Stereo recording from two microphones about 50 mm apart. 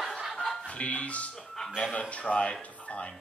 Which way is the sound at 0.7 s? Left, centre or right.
Left.